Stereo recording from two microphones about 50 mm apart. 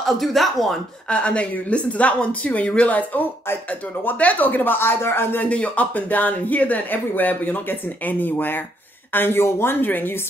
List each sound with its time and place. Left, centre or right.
0.0 s speech: centre
1.1 s speech: left
5.4 s speech: left